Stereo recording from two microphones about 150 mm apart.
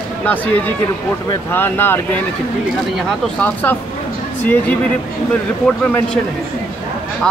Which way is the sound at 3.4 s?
10° left (ahead or behind).